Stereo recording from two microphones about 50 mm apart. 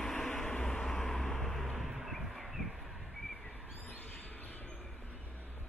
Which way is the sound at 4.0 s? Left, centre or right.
Left.